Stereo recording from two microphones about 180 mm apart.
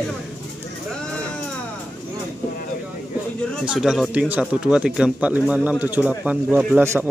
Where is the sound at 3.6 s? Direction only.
5° right (ahead or behind).